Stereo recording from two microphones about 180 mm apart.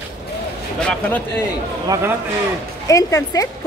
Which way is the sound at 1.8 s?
20° right (ahead or behind).